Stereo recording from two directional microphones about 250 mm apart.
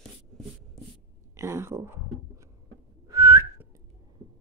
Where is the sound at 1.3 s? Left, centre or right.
Centre.